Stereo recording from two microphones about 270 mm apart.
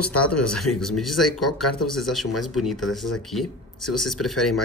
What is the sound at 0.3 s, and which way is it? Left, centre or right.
Speech, left.